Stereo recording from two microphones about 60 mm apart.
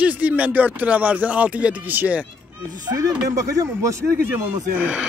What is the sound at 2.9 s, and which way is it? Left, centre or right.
Speech, right.